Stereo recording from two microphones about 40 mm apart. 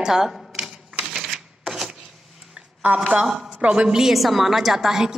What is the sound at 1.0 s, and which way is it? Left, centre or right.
Typewriter, centre.